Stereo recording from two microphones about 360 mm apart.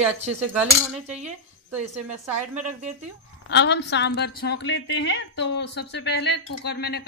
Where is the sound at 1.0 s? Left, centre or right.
Centre.